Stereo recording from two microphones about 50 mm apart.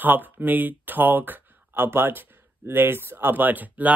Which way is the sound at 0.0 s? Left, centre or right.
Right.